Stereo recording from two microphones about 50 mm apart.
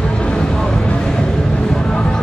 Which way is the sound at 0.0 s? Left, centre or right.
Centre.